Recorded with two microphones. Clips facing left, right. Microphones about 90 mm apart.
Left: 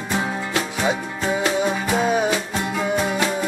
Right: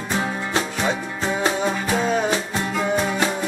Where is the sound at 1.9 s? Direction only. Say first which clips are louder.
Left 2 dB; 10° left (ahead or behind).